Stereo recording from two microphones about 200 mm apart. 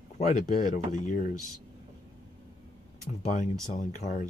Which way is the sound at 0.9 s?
40° left (ahead or behind).